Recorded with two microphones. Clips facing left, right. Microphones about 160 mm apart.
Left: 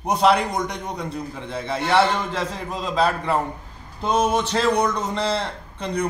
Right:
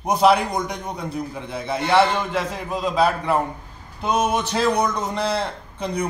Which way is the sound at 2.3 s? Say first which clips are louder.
Right 2 dB; 10° right (ahead or behind).